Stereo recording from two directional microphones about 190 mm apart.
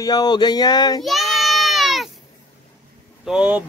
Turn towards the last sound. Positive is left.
turn(degrees=-5)  # may be behind; listen again after turning